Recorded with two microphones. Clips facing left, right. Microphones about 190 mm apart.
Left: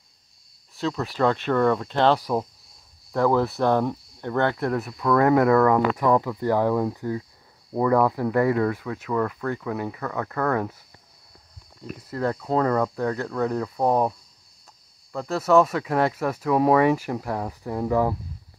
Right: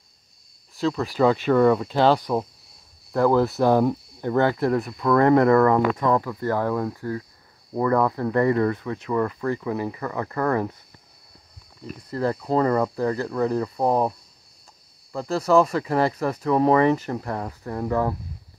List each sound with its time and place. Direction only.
0.7 s speech: centre (ahead or behind)
12.1 s speech: centre (ahead or behind)
15.1 s speech: centre (ahead or behind)